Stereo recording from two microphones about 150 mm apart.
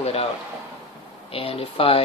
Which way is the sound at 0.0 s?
40° left (ahead or behind).